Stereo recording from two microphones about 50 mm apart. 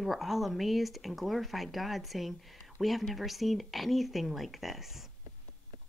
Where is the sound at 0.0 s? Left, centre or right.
Centre.